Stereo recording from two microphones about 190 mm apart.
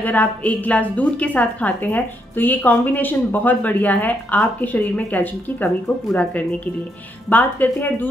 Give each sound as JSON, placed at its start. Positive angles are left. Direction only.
{"t": 0.0, "sound": "a woman's voice", "side_deg": 10}